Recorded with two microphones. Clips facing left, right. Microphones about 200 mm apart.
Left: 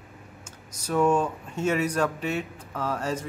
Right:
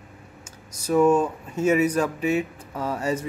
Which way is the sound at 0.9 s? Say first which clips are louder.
Right 4 dB; 5° right (ahead or behind).